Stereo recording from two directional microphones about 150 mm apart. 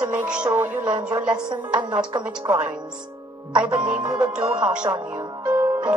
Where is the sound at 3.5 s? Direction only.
30° right (ahead or behind).